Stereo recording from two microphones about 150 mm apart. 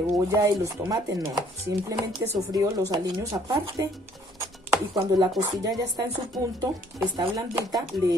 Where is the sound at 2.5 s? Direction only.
25° right (ahead or behind).